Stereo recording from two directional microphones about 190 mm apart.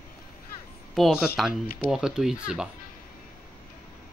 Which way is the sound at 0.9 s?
Centre (ahead or behind).